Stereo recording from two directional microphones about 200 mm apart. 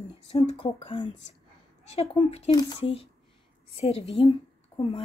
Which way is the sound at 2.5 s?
20° left (ahead or behind).